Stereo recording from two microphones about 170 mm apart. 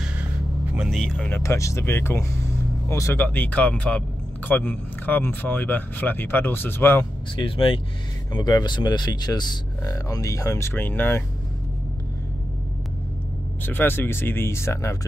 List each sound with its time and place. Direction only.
0.7 s speech: centre (ahead or behind)
7.3 s speech: 30° left (ahead or behind); by 11.2 s 10° left (ahead or behind)
13.6 s speech: 10° left (ahead or behind)